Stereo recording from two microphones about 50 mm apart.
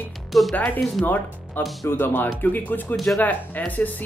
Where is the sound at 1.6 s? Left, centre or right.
Left.